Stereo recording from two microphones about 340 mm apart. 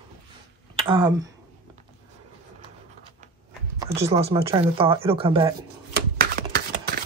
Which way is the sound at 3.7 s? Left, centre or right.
Centre.